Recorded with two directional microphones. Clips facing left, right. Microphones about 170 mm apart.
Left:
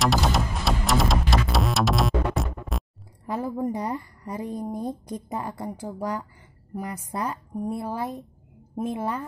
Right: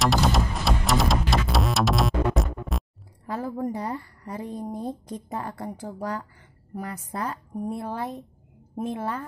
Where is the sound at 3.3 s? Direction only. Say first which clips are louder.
Left 2 dB; 15° left (ahead or behind).